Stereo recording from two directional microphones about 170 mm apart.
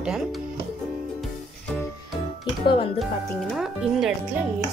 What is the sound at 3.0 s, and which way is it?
A woman's voice, centre (ahead or behind).